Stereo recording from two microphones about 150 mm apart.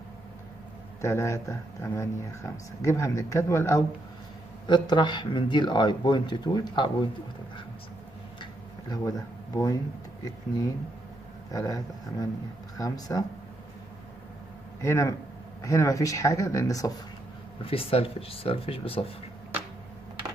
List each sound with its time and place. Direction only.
1.0 s speech: 20° left (ahead or behind)
4.6 s speech: 30° left (ahead or behind)
8.4 s a sound: 25° left (ahead or behind)
11.5 s speech: 25° left (ahead or behind)
14.8 s speech: 20° left (ahead or behind)
17.6 s speech: 40° left (ahead or behind)